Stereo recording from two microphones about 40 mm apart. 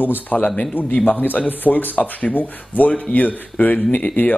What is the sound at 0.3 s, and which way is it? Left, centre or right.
Speech, left.